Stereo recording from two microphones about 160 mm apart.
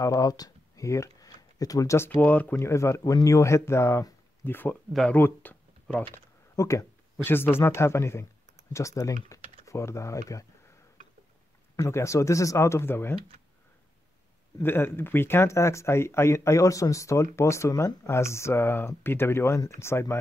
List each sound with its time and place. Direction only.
0.0 s speech: 20° left (ahead or behind)
11.7 s speech: 20° left (ahead or behind)
14.6 s speech: 15° left (ahead or behind)